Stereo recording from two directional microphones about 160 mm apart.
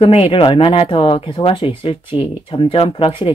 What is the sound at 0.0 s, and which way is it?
Speech, 35° left (ahead or behind).